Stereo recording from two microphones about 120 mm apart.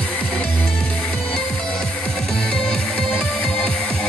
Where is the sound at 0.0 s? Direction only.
10° left (ahead or behind).